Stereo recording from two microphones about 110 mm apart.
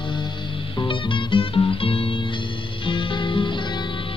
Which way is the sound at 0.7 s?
50° left (ahead or behind).